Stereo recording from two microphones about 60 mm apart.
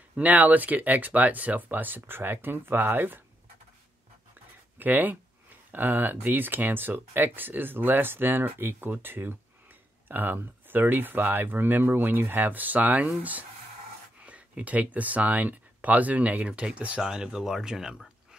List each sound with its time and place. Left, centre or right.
0.1 s speech: right
4.7 s speech: right
17.0 s speech: centre